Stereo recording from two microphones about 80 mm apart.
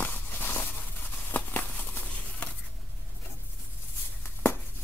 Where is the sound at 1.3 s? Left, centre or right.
Left.